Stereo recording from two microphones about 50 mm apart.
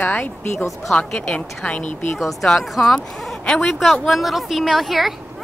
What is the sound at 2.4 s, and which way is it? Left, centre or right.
Speech, centre.